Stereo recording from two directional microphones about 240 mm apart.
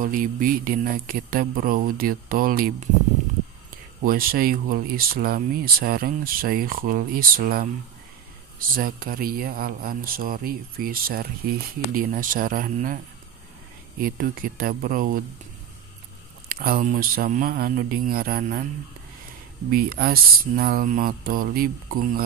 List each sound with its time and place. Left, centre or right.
0.0 s speech: right
4.0 s speech: right
14.0 s speech: right
16.4 s speech: right
19.7 s speech: right